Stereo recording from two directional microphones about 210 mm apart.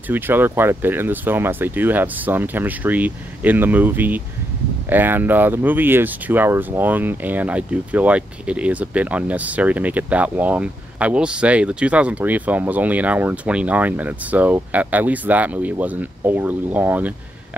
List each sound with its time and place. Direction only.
0.1 s speech: 10° right (ahead or behind)